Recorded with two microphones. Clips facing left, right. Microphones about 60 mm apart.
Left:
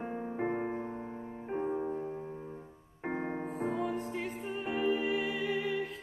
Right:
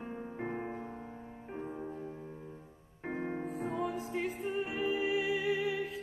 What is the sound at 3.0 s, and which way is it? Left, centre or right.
Music, left.